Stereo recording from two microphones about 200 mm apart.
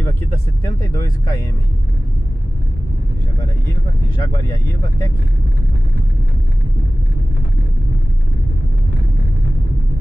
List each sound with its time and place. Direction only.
0.0 s speech: 10° left (ahead or behind)
4.2 s speech: 15° left (ahead or behind)